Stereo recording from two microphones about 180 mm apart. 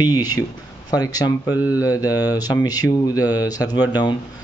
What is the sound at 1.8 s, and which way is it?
Speech, 20° left (ahead or behind).